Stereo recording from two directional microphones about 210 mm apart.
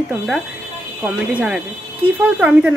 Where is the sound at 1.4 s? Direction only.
5° right (ahead or behind).